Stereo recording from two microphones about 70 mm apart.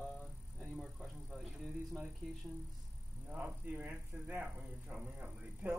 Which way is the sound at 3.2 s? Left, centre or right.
Right.